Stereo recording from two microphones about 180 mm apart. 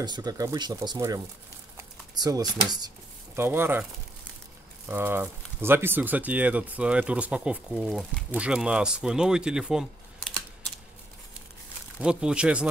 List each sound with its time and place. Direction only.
0.0 s speech: 20° right (ahead or behind)
4.8 s speech: 10° right (ahead or behind)
12.0 s speech: 5° right (ahead or behind)